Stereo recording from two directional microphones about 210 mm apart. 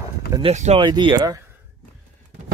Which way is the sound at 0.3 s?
30° right (ahead or behind).